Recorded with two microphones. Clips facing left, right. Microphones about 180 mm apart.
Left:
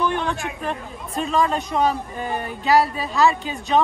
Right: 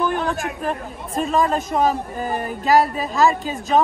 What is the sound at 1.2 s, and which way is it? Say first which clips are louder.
Speech: right 1 dB; 40° right (ahead or behind).